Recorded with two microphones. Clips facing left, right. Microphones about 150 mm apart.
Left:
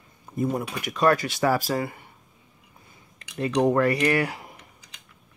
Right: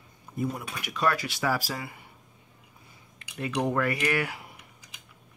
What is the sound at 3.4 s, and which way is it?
Cutlery, 40° left (ahead or behind).